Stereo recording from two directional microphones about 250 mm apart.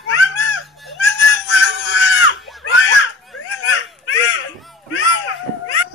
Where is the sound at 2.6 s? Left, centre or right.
Left.